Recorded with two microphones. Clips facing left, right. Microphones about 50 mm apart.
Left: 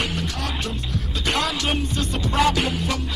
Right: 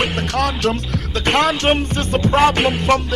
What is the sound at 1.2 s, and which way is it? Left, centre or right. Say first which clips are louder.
Music: right 8 dB; right.